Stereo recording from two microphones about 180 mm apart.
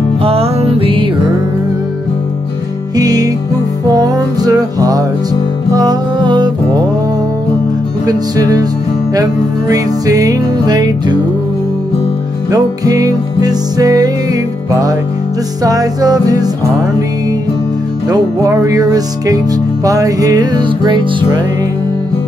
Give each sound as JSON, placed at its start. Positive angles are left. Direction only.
{"t": 0.2, "sound": "music", "side_deg": -35}
{"t": 3.0, "sound": "music", "side_deg": -20}
{"t": 8.1, "sound": "music", "side_deg": -20}
{"t": 12.4, "sound": "music", "side_deg": -20}
{"t": 18.0, "sound": "music", "side_deg": -20}